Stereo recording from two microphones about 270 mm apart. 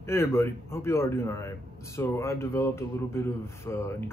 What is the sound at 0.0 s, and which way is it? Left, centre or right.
A man's voice, centre.